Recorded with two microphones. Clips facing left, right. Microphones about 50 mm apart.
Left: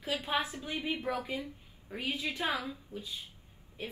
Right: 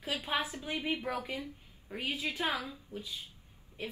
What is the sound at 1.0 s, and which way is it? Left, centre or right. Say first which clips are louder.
A woman's voice: left 2 dB; right.